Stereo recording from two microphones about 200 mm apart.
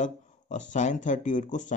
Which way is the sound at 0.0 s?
35° left (ahead or behind).